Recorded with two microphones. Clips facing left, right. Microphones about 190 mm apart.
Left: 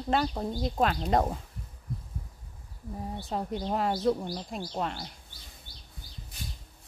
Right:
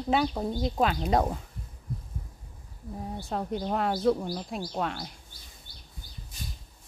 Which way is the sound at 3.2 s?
5° left (ahead or behind).